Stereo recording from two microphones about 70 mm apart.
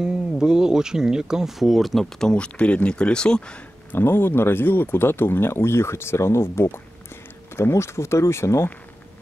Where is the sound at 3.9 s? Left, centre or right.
Left.